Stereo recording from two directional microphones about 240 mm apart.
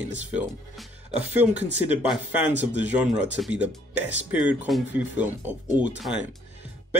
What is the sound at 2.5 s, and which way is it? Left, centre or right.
Speech, right.